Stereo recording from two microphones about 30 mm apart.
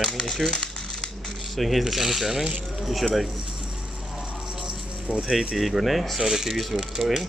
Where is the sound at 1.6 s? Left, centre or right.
Centre.